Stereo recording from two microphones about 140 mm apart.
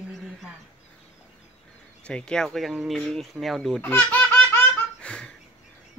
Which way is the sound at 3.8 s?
15° left (ahead or behind).